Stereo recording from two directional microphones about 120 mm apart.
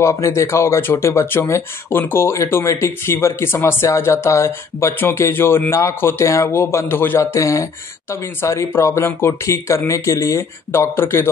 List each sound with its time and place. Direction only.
0.0 s speech: 25° left (ahead or behind)